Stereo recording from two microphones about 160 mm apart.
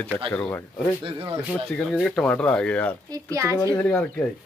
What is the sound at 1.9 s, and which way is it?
A man's voice, centre (ahead or behind).